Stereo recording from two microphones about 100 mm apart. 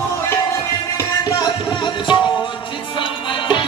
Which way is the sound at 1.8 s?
50° left (ahead or behind).